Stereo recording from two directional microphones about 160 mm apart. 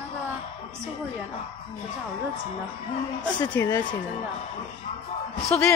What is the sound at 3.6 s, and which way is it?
Speech, 20° left (ahead or behind).